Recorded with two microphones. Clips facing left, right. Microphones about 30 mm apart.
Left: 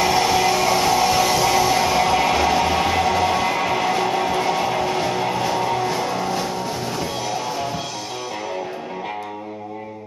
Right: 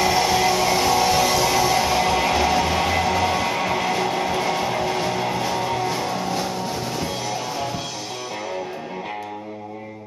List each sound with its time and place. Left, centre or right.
0.0 s music: centre